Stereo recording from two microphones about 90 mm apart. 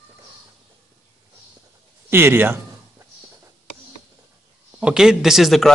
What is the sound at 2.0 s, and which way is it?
Speech, 25° right (ahead or behind).